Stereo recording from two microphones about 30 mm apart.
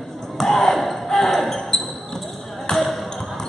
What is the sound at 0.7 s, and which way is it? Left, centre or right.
Basketball bounce, centre.